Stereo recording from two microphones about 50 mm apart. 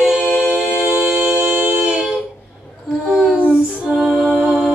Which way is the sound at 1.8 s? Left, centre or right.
Centre.